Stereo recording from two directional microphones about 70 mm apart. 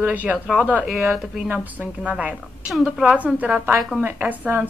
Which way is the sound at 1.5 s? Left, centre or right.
Right.